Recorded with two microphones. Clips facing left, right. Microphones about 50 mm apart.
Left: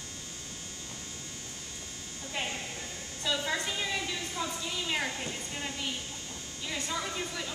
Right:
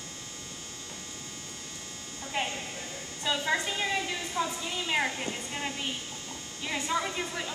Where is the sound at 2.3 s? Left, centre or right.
Centre.